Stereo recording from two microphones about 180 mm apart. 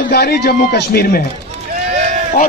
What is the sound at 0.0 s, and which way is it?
A man's voice, 60° left (ahead or behind).